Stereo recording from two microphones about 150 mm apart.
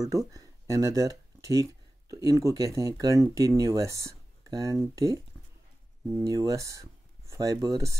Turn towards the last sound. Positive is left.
turn(degrees=-20)  # may be behind; listen again after turning